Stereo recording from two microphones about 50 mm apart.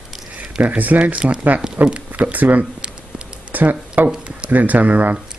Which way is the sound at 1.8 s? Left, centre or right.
Right.